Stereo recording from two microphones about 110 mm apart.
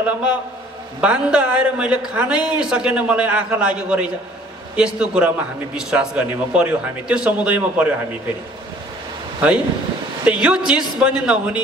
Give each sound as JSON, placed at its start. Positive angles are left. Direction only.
{"t": 0.0, "sound": "a man's voice", "side_deg": -10}
{"t": 10.2, "sound": "a man's voice", "side_deg": -10}